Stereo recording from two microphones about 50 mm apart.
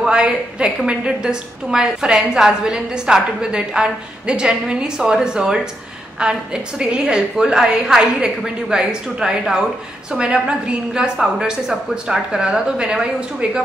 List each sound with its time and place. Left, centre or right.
0.0 s a woman's voice: centre